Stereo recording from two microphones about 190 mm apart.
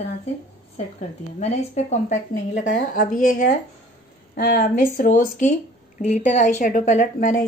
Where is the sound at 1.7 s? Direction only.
40° left (ahead or behind).